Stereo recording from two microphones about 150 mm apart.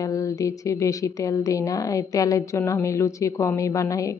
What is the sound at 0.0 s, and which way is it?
A woman's voice, 20° left (ahead or behind).